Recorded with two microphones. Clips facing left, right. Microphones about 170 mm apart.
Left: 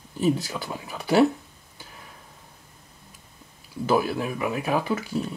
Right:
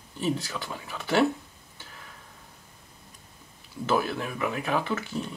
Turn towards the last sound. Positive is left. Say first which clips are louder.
# left 4 dB
turn(degrees=10)  # may be behind; listen again after turning